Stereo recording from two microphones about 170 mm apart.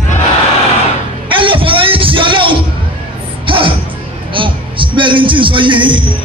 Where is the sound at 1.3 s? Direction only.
30° right (ahead or behind).